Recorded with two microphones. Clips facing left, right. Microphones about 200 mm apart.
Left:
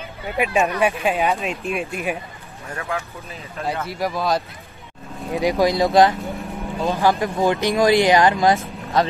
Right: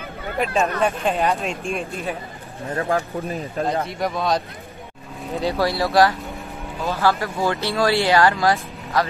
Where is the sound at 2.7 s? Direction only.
35° right (ahead or behind).